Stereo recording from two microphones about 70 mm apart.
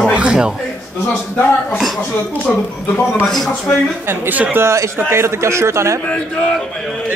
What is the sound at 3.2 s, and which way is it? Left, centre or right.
Speech, centre.